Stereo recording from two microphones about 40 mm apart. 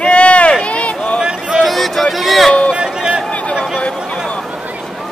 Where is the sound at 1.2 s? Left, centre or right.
Right.